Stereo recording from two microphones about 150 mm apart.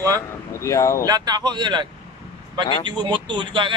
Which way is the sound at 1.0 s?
25° right (ahead or behind).